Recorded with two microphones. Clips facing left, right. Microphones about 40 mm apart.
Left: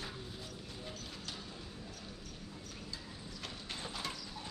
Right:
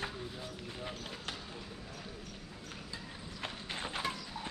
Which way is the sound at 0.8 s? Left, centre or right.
Right.